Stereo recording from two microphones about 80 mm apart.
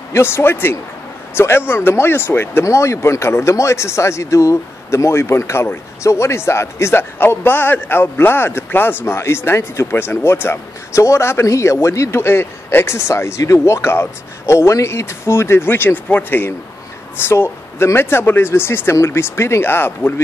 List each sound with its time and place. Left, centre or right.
0.1 s a man's voice: left